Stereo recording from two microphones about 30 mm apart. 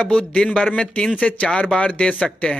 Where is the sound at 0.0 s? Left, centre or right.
Left.